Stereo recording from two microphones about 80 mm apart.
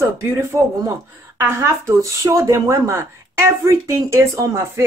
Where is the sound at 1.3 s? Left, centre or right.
Right.